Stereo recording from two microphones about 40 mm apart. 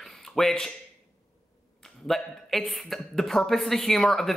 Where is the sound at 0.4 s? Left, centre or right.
Centre.